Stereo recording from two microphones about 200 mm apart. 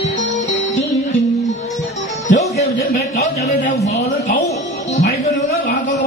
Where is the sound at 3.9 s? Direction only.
35° left (ahead or behind).